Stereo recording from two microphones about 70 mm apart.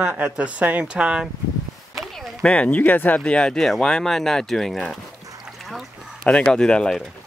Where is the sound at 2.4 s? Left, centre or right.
Centre.